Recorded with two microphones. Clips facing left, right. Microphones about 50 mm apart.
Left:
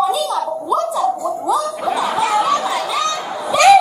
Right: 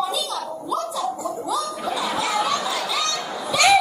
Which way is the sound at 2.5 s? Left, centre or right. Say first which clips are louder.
Left 6 dB; left.